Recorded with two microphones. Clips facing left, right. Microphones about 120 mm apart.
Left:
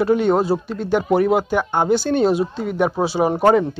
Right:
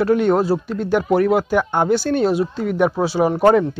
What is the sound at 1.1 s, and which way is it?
Speech, 10° left (ahead or behind).